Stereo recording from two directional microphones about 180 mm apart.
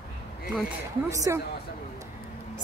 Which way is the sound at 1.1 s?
15° right (ahead or behind).